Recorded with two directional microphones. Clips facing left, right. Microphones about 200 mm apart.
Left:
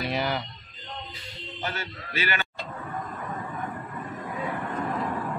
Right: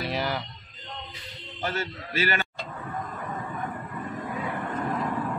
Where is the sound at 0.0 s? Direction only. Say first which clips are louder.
Left 1 dB; centre (ahead or behind).